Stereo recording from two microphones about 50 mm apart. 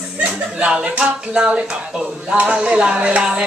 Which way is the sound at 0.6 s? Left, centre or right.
Centre.